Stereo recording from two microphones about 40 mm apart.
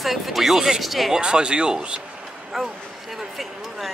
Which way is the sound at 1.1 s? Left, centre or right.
Right.